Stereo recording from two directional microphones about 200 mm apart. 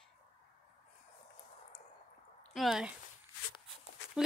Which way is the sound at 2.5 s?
Centre (ahead or behind).